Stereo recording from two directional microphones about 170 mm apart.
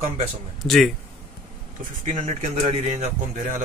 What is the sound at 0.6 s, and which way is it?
Speech, centre (ahead or behind).